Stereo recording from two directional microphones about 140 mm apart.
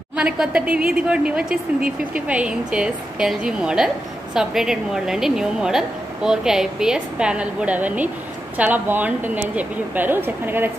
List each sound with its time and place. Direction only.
0.1 s a woman's voice: 5° right (ahead or behind)